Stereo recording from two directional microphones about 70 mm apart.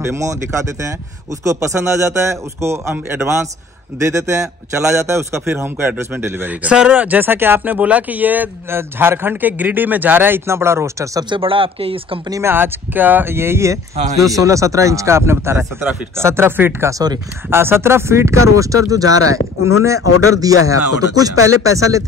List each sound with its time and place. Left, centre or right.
0.0 s speech: right
5.5 s speech: right
6.5 s speech: centre; by 11.1 s right
12.4 s speech: right